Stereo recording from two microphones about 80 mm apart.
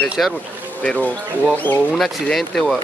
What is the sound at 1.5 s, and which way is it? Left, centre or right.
Speech, left.